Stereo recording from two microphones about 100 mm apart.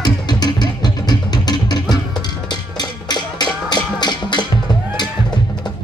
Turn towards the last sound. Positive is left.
turn(degrees=45)  # may be behind; listen again after turning